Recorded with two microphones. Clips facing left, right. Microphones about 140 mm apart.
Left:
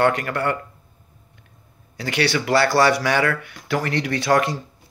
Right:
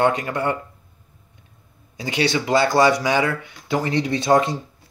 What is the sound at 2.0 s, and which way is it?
Speech, 20° right (ahead or behind).